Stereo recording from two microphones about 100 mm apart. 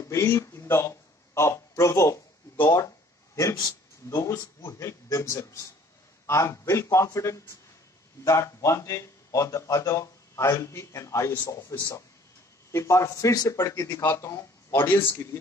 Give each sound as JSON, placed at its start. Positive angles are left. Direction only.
{"t": 0.0, "sound": "speech", "side_deg": 30}
{"t": 3.3, "sound": "speech", "side_deg": 30}
{"t": 12.7, "sound": "speech", "side_deg": 30}